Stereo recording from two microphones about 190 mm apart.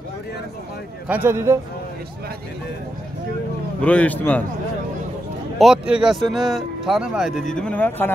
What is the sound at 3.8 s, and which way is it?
Speech, 10° left (ahead or behind).